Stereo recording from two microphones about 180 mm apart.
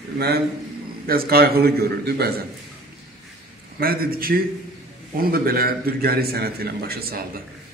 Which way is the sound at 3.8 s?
55° right (ahead or behind).